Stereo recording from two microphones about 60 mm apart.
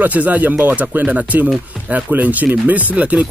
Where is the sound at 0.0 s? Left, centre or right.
Right.